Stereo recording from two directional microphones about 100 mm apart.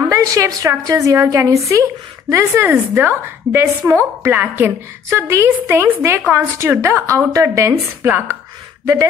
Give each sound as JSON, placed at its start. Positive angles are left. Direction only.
{"t": 0.1, "sound": "a woman's voice", "side_deg": -35}
{"t": 2.5, "sound": "a woman's voice", "side_deg": -20}